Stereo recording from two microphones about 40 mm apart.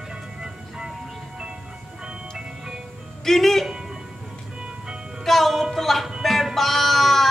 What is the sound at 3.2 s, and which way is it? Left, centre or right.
Speech, centre.